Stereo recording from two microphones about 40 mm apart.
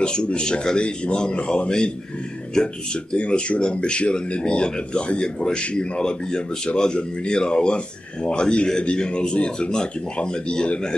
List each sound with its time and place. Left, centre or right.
0.0 s speech: left